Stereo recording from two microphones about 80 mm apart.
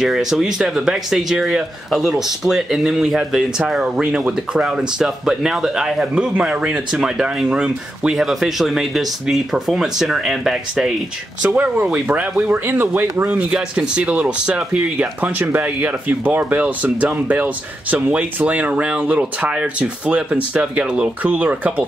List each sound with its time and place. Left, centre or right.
0.0 s speech: centre
11.4 s speech: right